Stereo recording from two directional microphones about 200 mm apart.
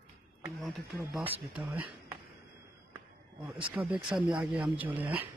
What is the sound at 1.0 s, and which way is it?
Speech, 10° right (ahead or behind).